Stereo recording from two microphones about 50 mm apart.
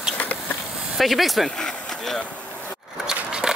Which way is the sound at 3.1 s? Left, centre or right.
Centre.